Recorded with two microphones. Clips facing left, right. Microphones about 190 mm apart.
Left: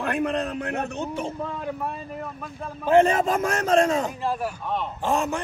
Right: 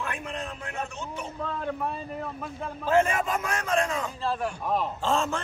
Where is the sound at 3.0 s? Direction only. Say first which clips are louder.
Left 6 dB; 35° left (ahead or behind).